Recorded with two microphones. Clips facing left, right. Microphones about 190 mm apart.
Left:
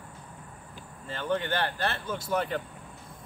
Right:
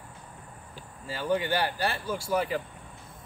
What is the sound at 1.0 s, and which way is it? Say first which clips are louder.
Speech: right 2 dB; 5° right (ahead or behind).